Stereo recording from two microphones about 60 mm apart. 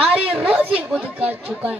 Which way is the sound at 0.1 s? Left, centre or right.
Right.